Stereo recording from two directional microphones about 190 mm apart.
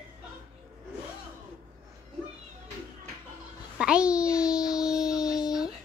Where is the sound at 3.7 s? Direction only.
5° right (ahead or behind).